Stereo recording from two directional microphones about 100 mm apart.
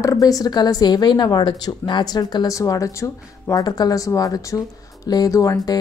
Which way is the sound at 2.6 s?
35° left (ahead or behind).